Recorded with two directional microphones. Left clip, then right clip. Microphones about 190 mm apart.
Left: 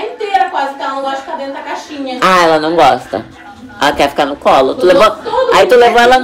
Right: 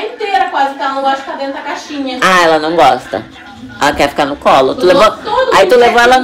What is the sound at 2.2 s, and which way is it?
A woman's voice, 20° left (ahead or behind).